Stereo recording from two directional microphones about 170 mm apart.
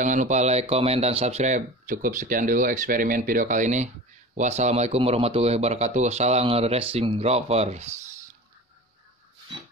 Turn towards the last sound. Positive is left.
turn(degrees=-40)  # may be behind; listen again after turning